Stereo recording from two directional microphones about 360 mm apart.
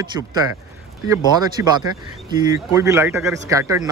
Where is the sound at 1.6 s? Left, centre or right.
Centre.